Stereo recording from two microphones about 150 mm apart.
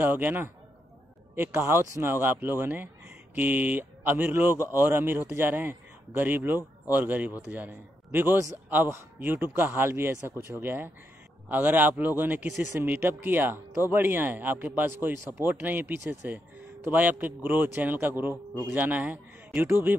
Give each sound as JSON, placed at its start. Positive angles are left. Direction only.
{"t": 0.0, "sound": "speech", "side_deg": -15}